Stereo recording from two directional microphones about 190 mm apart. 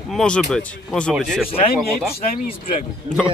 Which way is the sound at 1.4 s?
30° left (ahead or behind).